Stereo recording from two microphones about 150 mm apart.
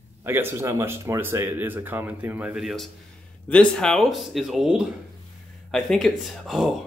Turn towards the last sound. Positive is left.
turn(degrees=0)  # may be behind; listen again after turning